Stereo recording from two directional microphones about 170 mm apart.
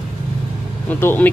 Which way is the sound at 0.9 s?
10° left (ahead or behind).